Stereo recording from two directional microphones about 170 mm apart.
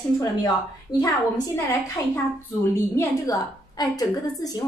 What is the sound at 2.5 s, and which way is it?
A woman's voice, 20° left (ahead or behind).